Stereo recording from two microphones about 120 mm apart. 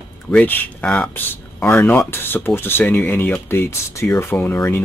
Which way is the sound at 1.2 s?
15° left (ahead or behind).